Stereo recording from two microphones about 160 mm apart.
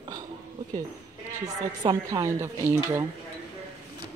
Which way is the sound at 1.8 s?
25° right (ahead or behind).